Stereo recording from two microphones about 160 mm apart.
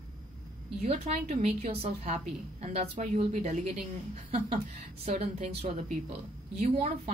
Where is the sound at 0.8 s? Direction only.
40° right (ahead or behind).